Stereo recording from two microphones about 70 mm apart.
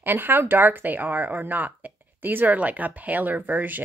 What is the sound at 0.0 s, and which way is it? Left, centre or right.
A woman's voice, right.